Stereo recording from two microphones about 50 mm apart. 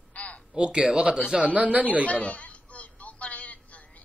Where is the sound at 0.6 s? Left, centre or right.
Centre.